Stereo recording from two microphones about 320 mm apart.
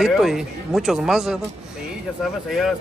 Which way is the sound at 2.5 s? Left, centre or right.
Centre.